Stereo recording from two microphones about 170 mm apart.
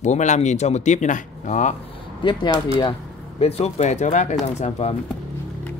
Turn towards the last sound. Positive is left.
turn(degrees=40)  # may be behind; listen again after turning